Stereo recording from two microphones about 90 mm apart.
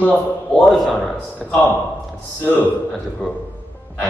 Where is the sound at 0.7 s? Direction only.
Centre (ahead or behind).